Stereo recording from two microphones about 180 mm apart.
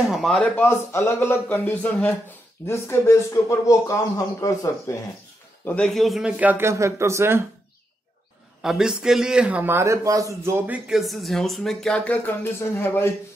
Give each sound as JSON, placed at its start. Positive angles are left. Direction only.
{"t": 0.1, "sound": "speech", "side_deg": 0}
{"t": 0.6, "sound": "speech", "side_deg": 15}
{"t": 5.7, "sound": "a man's voice", "side_deg": 5}
{"t": 8.6, "sound": "a man's voice", "side_deg": -5}
{"t": 10.9, "sound": "speech", "side_deg": 0}